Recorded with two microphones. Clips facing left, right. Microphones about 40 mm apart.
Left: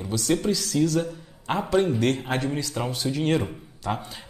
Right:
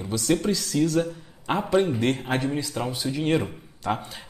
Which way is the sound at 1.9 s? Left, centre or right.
Right.